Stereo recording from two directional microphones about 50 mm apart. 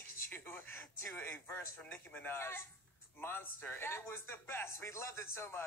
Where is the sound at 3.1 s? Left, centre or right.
Left.